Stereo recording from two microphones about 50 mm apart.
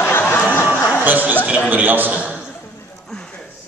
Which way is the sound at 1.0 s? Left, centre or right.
Right.